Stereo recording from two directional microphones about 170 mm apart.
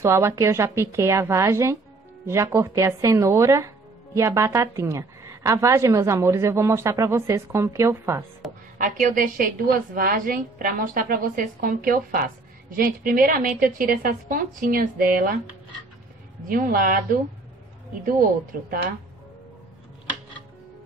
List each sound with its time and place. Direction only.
0.0 s speech: 15° right (ahead or behind)
8.7 s a woman's voice: 50° right (ahead or behind)
16.4 s a woman's voice: 55° right (ahead or behind)